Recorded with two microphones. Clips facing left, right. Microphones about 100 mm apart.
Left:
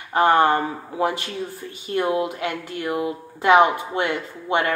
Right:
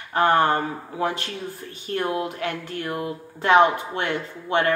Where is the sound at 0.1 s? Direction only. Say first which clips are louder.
Left 2 dB; 15° left (ahead or behind).